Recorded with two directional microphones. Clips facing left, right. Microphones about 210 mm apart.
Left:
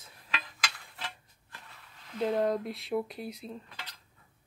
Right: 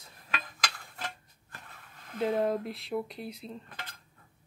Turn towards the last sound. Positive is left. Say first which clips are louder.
# right 2 dB
turn(degrees=-50)  # may be behind; listen again after turning